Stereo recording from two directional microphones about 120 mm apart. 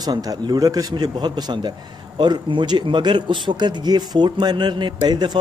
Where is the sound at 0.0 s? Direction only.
30° right (ahead or behind).